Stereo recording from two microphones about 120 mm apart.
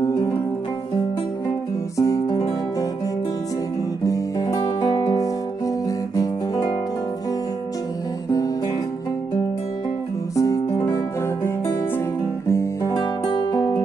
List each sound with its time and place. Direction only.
0.0 s music: 30° left (ahead or behind)
2.0 s music: 30° left (ahead or behind)
4.0 s music: 30° left (ahead or behind)
4.8 s music: 40° left (ahead or behind)
5.9 s guitar: 30° left (ahead or behind)
10.3 s music: 30° left (ahead or behind)
12.4 s guitar: 25° left (ahead or behind)
13.3 s music: 40° left (ahead or behind)